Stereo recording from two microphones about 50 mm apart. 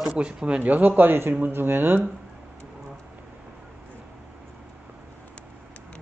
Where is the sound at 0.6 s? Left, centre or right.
Right.